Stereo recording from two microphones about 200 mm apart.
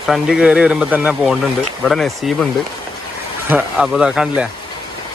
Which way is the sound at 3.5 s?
5° right (ahead or behind).